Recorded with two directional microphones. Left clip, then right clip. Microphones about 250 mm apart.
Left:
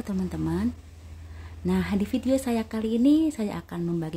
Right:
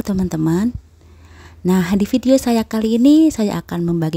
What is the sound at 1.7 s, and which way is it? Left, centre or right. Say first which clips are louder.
A woman's voice: right 10 dB; right.